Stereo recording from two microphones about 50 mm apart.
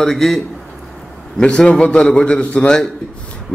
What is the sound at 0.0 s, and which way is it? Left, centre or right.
Speech, centre.